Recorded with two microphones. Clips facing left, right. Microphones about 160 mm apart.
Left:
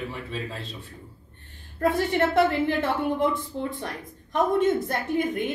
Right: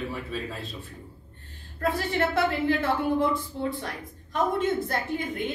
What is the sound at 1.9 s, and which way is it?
Speech, 20° left (ahead or behind).